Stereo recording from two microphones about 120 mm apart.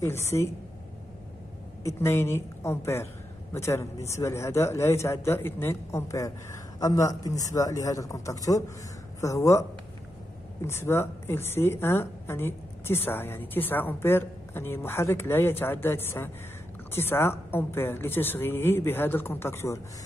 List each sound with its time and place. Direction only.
0.0 s a woman's voice: 20° left (ahead or behind)
1.8 s a woman's voice: 25° left (ahead or behind)